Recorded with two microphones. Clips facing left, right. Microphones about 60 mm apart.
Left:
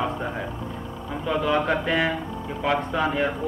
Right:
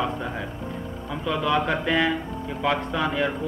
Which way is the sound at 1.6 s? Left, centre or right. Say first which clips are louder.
Even; centre.